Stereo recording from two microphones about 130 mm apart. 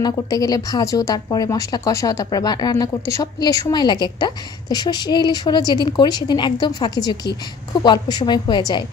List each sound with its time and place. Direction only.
0.0 s a woman's voice: 30° left (ahead or behind)